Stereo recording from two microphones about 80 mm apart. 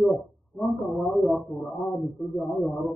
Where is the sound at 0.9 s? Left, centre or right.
Centre.